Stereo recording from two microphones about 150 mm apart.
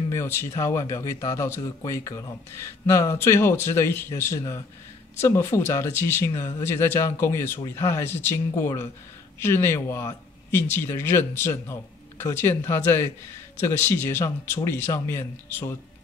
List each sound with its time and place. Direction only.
0.1 s speech: 15° left (ahead or behind)